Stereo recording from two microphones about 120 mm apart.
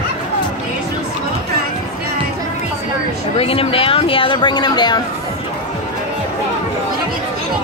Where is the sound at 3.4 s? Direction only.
50° left (ahead or behind).